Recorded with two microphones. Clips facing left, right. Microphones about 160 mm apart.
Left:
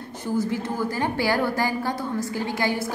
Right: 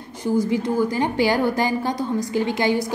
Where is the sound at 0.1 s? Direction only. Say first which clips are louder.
Right 5 dB; 15° right (ahead or behind).